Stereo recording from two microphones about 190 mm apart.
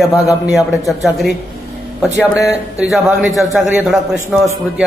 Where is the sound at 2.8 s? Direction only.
5° right (ahead or behind).